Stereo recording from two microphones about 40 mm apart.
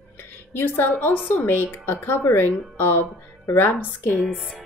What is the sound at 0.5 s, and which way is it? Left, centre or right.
Speech, left.